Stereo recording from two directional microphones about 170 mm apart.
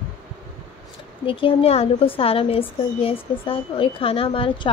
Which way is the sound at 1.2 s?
35° left (ahead or behind).